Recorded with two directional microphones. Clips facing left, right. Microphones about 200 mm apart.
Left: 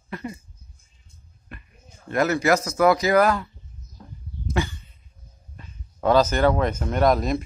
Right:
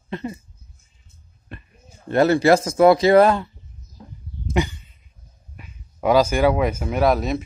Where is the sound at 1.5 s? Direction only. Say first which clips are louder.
Right 4 dB; 30° right (ahead or behind).